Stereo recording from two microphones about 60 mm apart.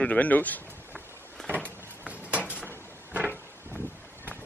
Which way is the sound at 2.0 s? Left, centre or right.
Right.